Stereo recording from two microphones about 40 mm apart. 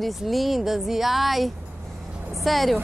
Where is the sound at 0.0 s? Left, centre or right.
Centre.